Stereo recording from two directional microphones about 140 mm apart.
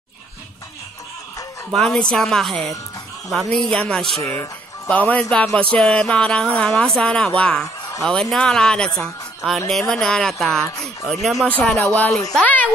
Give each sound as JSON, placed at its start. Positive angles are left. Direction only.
{"t": 1.7, "sound": "speech", "side_deg": 5}
{"t": 4.2, "sound": "speech", "side_deg": 25}
{"t": 4.8, "sound": "speech", "side_deg": 10}